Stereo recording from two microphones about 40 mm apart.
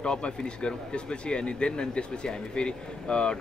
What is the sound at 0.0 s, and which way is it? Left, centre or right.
Speech, left.